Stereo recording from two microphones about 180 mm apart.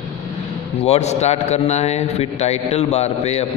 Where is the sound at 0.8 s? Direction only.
35° left (ahead or behind).